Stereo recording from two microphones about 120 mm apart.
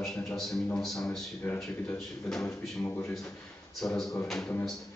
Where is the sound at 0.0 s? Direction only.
5° left (ahead or behind).